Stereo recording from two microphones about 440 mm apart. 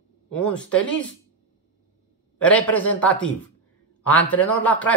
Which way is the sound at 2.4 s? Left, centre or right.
Centre.